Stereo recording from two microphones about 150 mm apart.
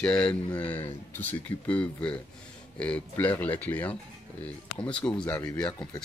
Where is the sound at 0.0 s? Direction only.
5° left (ahead or behind).